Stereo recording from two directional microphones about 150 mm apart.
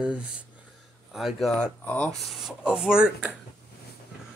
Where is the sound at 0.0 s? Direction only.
5° right (ahead or behind).